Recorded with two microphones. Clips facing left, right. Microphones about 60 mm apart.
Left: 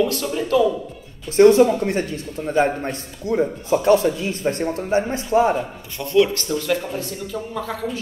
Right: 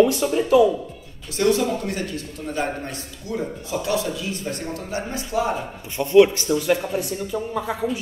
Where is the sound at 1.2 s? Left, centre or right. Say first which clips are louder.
Left 8 dB; left.